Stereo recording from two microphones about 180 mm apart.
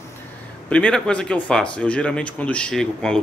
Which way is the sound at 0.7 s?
5° left (ahead or behind).